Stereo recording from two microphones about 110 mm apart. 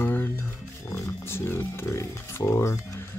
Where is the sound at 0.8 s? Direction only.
25° left (ahead or behind).